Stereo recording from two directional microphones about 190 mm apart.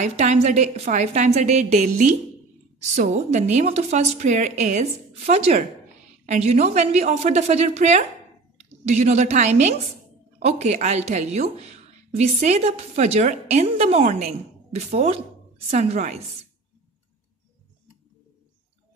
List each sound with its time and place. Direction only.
0.0 s a woman's voice: 35° right (ahead or behind)